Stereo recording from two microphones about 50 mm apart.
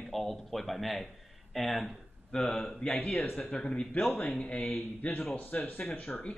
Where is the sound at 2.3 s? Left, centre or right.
Centre.